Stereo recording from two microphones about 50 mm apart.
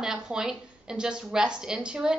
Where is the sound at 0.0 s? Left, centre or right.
Centre.